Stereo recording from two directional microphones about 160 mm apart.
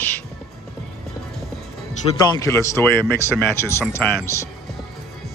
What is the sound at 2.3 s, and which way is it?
Speech, 20° left (ahead or behind).